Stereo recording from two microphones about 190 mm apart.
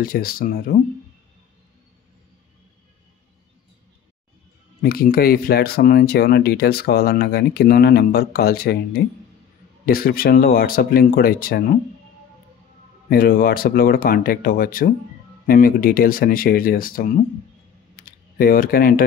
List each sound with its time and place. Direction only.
0.0 s speech: 50° left (ahead or behind)
4.8 s speech: 50° left (ahead or behind)
13.1 s speech: 50° left (ahead or behind)
17.9 s computer keyboard: 50° left (ahead or behind)